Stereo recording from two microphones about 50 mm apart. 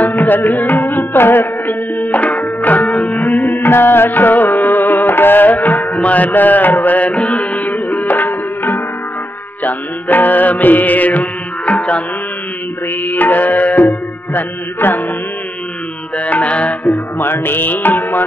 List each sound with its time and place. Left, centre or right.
0.0 s music: left
3.5 s music: left
13.0 s music: left
16.2 s music: left
17.2 s music: left